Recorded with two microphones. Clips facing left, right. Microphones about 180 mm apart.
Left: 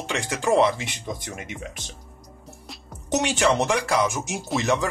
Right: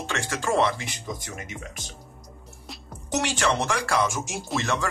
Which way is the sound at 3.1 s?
20° left (ahead or behind).